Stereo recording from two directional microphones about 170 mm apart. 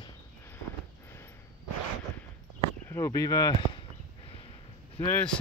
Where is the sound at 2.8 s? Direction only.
15° left (ahead or behind).